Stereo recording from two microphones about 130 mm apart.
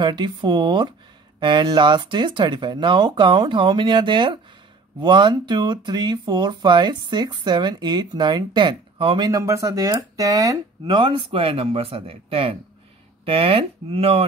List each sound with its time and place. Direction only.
0.0 s speech: 35° right (ahead or behind)
9.3 s speech: 25° right (ahead or behind)
11.0 s speech: 40° right (ahead or behind)